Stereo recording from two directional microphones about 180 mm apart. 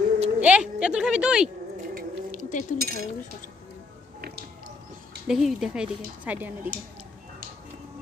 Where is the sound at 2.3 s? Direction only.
45° left (ahead or behind).